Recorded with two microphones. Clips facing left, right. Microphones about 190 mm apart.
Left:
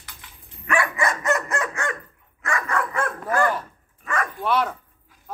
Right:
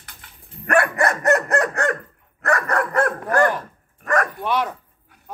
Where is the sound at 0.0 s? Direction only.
55° right (ahead or behind).